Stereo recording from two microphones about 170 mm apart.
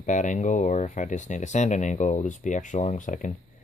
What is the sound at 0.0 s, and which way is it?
Speech, 45° left (ahead or behind).